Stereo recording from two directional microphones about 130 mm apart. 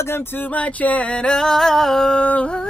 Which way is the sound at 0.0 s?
15° left (ahead or behind).